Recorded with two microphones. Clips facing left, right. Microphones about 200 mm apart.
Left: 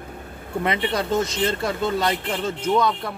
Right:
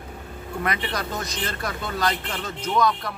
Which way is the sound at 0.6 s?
25° left (ahead or behind).